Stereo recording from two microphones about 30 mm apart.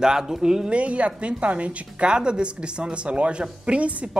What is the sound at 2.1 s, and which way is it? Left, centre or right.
A woman's voice, right.